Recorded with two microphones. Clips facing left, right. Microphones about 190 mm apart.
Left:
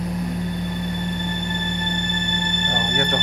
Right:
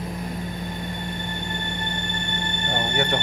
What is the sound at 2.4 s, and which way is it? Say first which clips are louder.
Music: left 4 dB; 75° left (ahead or behind).